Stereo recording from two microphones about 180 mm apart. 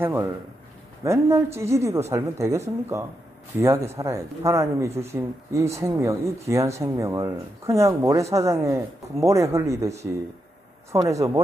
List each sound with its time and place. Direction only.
1.0 s speech: 15° right (ahead or behind)